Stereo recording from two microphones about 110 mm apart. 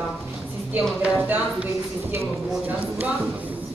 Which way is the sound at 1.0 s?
15° right (ahead or behind).